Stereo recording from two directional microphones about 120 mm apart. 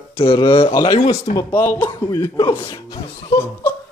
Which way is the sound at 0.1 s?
45° left (ahead or behind).